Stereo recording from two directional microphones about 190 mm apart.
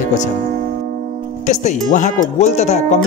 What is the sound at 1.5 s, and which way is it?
Speech, 40° left (ahead or behind).